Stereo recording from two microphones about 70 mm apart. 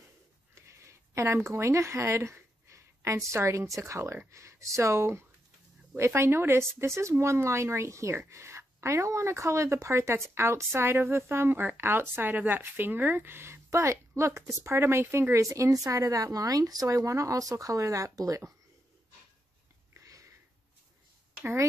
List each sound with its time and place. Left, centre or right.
0.6 s speech: right
20.0 s sniff: right